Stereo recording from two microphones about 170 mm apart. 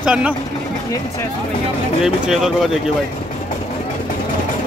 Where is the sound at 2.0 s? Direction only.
5° right (ahead or behind).